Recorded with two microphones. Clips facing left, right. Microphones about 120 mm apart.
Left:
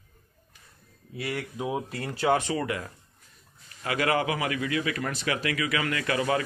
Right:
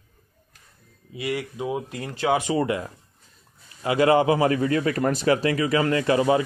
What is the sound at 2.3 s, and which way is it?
A man's voice, 15° right (ahead or behind).